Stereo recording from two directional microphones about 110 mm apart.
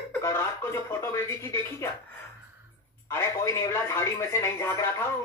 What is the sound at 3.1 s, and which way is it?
Speech, 25° left (ahead or behind).